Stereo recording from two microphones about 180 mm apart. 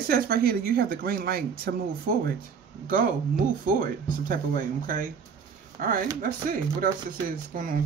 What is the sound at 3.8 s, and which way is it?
Speech, 50° right (ahead or behind).